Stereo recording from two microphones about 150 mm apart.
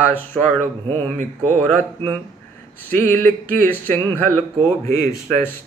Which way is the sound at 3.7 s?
10° left (ahead or behind).